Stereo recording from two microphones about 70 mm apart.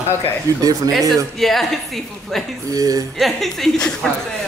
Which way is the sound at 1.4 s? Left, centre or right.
Centre.